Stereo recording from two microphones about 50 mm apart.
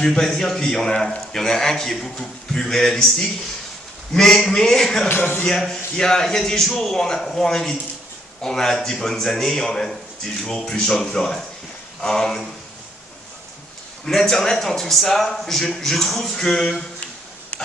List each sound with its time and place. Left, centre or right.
0.0 s a man's voice: centre
5.0 s speech: left
5.5 s a man's voice: centre
14.0 s a man's voice: centre